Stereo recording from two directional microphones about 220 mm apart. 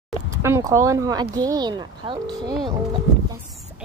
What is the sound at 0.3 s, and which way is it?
Speech, 10° right (ahead or behind).